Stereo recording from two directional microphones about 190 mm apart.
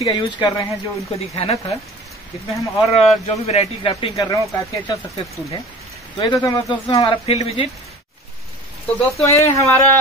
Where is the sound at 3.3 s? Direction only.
35° left (ahead or behind).